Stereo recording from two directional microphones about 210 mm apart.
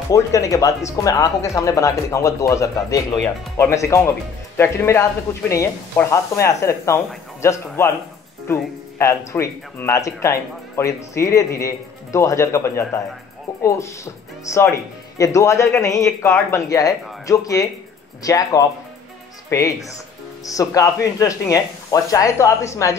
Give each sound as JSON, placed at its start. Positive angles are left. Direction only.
{"t": 0.1, "sound": "speech", "side_deg": 15}